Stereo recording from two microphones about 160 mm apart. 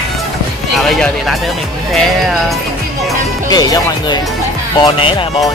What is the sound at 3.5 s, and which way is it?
Speech, 25° left (ahead or behind).